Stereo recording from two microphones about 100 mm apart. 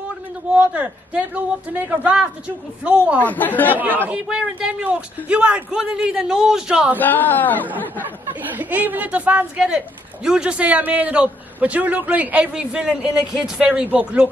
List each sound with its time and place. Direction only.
0.6 s speech: 15° right (ahead or behind)
3.2 s speech: 20° left (ahead or behind)
4.0 s speech: 10° right (ahead or behind)
7.0 s speech: 20° left (ahead or behind)
8.0 s speech: 15° right (ahead or behind)